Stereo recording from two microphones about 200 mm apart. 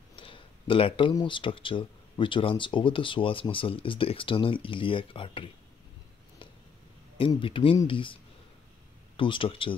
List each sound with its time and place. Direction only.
0.1 s speech: 25° left (ahead or behind)
7.2 s speech: 25° left (ahead or behind)